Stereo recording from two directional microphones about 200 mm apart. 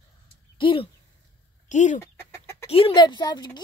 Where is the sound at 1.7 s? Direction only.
40° left (ahead or behind).